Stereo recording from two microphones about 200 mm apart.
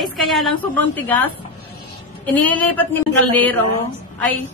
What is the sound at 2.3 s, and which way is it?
Speech, 10° left (ahead or behind).